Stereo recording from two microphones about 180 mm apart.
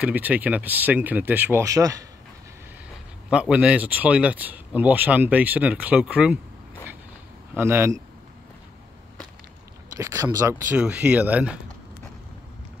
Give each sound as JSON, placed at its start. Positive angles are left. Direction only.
{"t": 0.0, "sound": "speech", "side_deg": -10}
{"t": 3.3, "sound": "speech", "side_deg": -5}
{"t": 7.5, "sound": "speech", "side_deg": -10}
{"t": 9.9, "sound": "speech", "side_deg": -15}
{"t": 10.8, "sound": "speech", "side_deg": -5}